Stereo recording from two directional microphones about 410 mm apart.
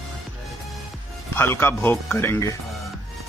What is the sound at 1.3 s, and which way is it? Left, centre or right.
Speech, centre.